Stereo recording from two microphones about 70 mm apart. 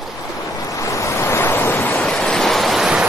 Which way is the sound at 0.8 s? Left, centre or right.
Left.